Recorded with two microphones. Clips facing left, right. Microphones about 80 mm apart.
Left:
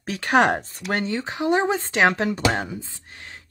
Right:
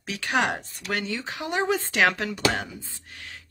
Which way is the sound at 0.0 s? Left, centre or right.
Left.